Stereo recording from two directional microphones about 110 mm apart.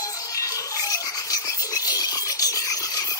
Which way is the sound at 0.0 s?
35° left (ahead or behind).